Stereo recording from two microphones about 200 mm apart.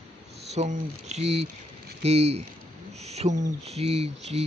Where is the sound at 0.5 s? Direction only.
35° right (ahead or behind).